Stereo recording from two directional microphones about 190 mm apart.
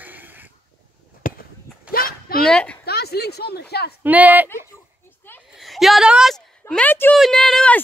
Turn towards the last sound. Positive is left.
turn(degrees=5)  # may be behind; listen again after turning